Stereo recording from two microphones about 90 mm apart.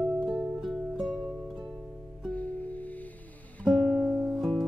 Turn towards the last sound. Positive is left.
turn(degrees=5)  # may be behind; listen again after turning